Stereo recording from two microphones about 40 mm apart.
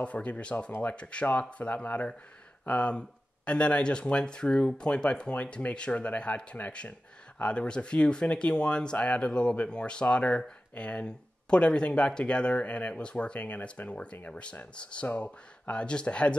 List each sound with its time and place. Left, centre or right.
0.0 s speech: left